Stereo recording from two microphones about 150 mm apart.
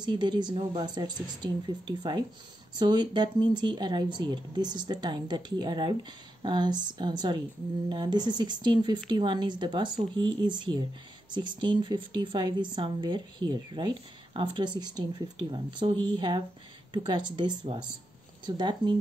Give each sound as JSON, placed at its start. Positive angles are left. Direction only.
{"t": 0.0, "sound": "speech", "side_deg": -30}